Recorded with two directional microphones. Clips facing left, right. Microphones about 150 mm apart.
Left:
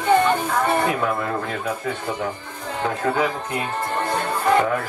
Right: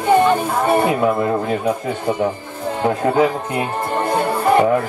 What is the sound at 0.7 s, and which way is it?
Speech, 25° right (ahead or behind).